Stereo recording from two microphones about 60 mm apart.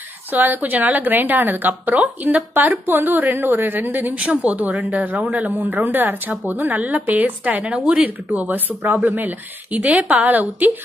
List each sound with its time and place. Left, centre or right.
0.3 s a woman's voice: right
4.2 s a woman's voice: centre
8.3 s speech: right